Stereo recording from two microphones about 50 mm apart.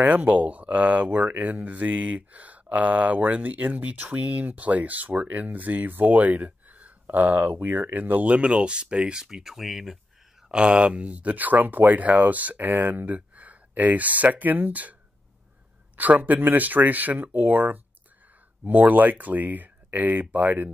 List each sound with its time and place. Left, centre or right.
0.0 s speech: right; by 9.9 s centre
10.5 s speech: right
16.0 s speech: right